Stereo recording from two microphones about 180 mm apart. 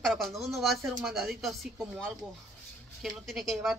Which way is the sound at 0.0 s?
Centre (ahead or behind).